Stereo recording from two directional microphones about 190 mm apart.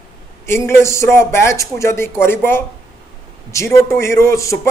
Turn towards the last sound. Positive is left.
turn(degrees=15)  # may be behind; listen again after turning